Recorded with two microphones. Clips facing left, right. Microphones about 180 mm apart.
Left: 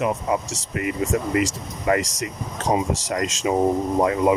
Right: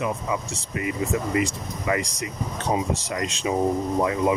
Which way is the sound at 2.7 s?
60° left (ahead or behind).